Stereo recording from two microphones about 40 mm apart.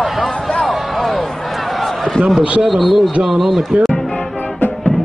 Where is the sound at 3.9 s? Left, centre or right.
Centre.